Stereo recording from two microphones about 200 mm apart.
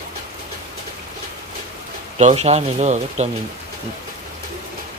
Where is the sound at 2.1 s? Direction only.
35° right (ahead or behind).